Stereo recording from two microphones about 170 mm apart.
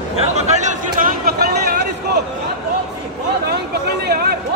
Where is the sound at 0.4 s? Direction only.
45° right (ahead or behind).